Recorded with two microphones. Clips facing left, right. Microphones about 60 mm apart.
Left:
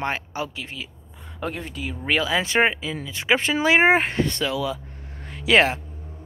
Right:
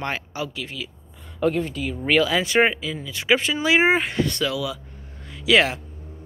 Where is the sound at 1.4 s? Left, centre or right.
Centre.